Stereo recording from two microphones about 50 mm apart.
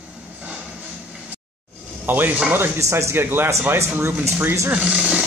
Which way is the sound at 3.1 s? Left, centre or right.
Right.